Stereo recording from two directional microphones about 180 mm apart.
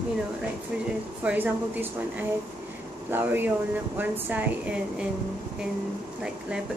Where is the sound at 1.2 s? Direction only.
10° right (ahead or behind).